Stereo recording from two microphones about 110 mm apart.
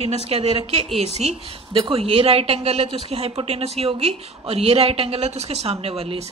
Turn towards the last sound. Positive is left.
turn(degrees=-65)  # may be behind; listen again after turning